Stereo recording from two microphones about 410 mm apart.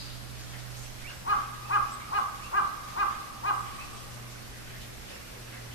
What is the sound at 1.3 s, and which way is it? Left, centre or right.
Crow, left.